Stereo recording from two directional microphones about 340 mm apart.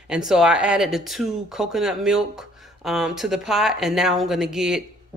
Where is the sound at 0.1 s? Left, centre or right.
Centre.